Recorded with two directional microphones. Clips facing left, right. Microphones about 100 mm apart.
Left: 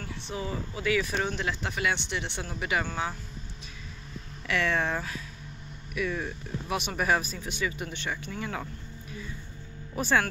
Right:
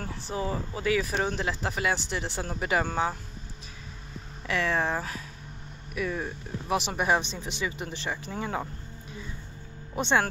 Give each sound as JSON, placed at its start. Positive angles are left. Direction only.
{"t": 0.0, "sound": "speech", "side_deg": -35}
{"t": 4.5, "sound": "speech", "side_deg": -30}
{"t": 9.9, "sound": "speech", "side_deg": -25}